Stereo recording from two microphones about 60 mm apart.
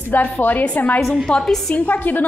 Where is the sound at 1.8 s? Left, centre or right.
Left.